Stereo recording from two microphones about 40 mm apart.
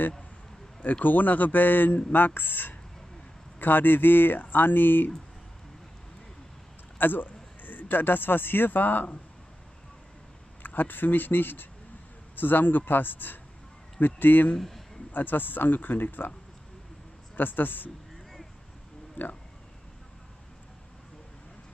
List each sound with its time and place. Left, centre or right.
1.0 s speech: left
7.0 s speech: left
10.6 s speech: left
17.4 s speech: left
19.2 s speech: left